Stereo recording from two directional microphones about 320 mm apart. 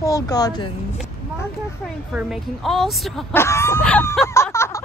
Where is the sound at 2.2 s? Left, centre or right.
Centre.